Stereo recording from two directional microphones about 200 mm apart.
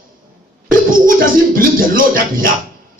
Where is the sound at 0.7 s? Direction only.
45° right (ahead or behind).